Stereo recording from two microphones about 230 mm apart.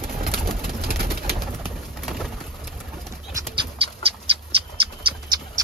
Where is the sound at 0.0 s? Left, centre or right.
Right.